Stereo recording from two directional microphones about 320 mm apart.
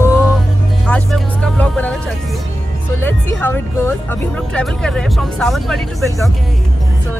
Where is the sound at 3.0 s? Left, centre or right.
Centre.